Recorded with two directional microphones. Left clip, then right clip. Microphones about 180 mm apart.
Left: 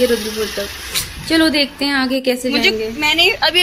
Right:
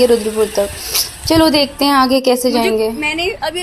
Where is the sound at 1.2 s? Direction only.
10° right (ahead or behind).